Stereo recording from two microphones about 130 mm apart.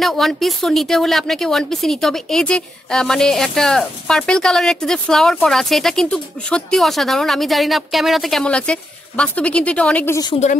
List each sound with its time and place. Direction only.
0.0 s speech: centre (ahead or behind)